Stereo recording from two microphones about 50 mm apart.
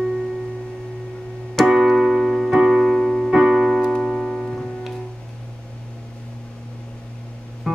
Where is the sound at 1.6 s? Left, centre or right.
Centre.